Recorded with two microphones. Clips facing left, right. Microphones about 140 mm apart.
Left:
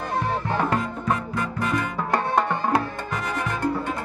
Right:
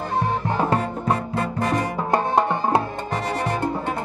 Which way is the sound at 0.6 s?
30° right (ahead or behind).